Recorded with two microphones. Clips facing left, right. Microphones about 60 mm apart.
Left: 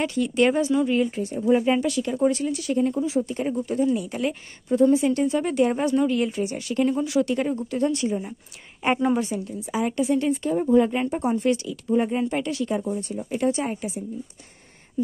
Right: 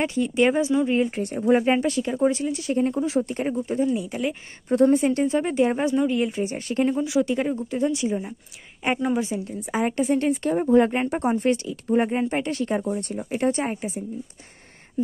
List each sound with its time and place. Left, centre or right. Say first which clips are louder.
0.0 s speech: even; right
1.1 s speech: right 1 dB; right
1.7 s speech: right 1 dB; right
3.0 s speech: right 1 dB; right
3.8 s speech: left 2 dB; centre
4.7 s speech: even; right; by 6.4 s centre
6.4 s speech: even; right
7.0 s speech: even; centre
8.8 s a woman's voice: left 2 dB; centre
9.4 s speech: right 1 dB; right
13.0 s speech: even; right